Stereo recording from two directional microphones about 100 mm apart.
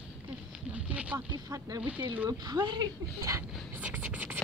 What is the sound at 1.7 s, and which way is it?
Speech, 15° right (ahead or behind).